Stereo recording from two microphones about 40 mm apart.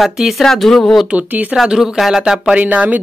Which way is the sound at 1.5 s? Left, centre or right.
Centre.